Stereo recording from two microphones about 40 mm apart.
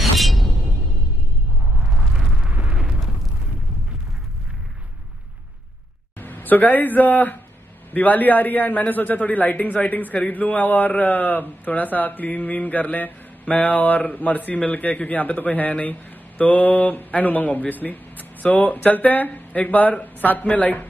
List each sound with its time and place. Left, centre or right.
0.2 s music: centre
1.8 s a sound: centre
2.7 s eruption: right
6.1 s a man's voice: left
15.7 s mantra: left
17.1 s a man's voice: left